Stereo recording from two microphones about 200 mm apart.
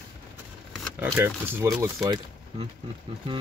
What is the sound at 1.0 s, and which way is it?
Speech, 10° right (ahead or behind).